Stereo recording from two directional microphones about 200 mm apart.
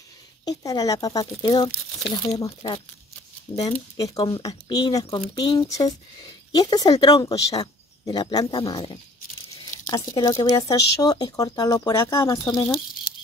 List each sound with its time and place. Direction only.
0.5 s speech: 20° left (ahead or behind)
3.9 s speech: 20° left (ahead or behind)